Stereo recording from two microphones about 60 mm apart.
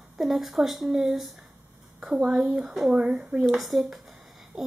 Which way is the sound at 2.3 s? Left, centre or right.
Centre.